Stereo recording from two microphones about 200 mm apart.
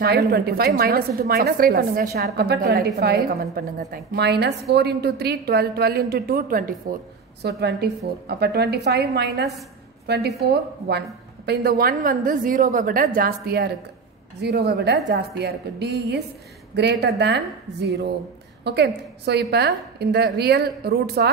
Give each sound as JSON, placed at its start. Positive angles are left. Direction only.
{"t": 0.3, "sound": "a woman's voice", "side_deg": -50}
{"t": 18.6, "sound": "a woman's voice", "side_deg": -55}